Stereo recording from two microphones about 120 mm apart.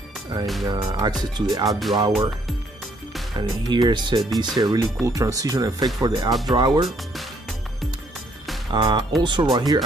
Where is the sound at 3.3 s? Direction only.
35° right (ahead or behind).